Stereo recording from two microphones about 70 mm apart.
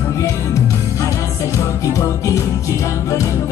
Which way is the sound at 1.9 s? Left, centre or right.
Left.